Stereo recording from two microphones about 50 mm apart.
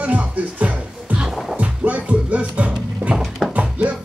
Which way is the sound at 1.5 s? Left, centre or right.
Right.